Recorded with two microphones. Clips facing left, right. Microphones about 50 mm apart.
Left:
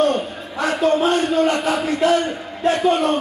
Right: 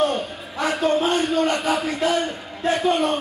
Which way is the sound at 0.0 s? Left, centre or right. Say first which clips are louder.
Left 3 dB; centre.